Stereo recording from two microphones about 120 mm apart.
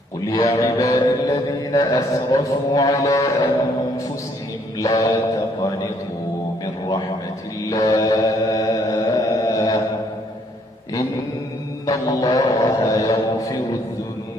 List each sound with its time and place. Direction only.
0.4 s a man's voice: 25° left (ahead or behind)
4.7 s a man's voice: 30° left (ahead or behind)
7.7 s mantra: 25° left (ahead or behind)
11.8 s a man's voice: 30° left (ahead or behind)